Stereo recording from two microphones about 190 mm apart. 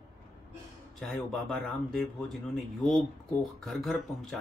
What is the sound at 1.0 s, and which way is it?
Speech, centre (ahead or behind).